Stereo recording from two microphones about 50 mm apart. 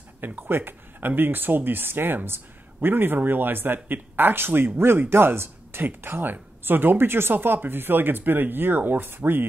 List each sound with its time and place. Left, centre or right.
0.2 s speech: right